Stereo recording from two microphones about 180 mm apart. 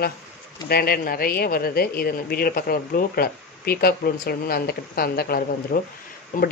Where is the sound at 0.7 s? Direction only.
60° left (ahead or behind).